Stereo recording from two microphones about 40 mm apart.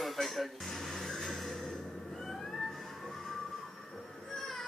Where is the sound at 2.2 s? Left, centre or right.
Centre.